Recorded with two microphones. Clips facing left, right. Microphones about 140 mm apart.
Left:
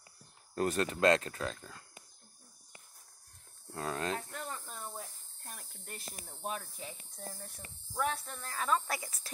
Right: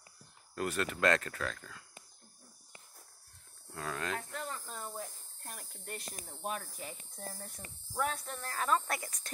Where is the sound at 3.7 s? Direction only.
30° left (ahead or behind).